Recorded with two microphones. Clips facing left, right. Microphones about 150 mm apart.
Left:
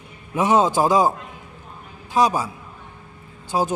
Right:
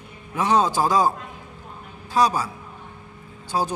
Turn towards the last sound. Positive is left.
turn(degrees=15)  # may be behind; listen again after turning